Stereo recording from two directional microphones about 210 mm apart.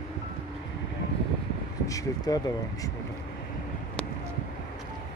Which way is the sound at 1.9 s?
15° left (ahead or behind).